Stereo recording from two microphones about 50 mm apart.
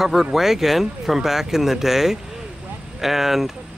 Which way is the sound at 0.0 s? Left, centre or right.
Centre.